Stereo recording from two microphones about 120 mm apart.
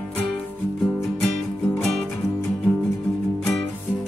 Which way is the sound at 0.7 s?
Centre (ahead or behind).